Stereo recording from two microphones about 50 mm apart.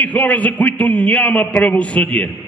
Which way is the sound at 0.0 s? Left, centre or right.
Left.